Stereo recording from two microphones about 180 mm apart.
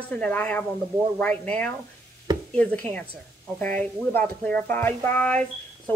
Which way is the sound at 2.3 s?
25° right (ahead or behind).